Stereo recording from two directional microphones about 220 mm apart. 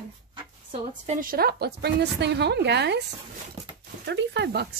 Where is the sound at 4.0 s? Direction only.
50° right (ahead or behind).